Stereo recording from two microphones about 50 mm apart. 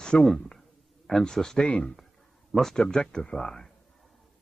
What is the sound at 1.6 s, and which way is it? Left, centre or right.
Speech, left.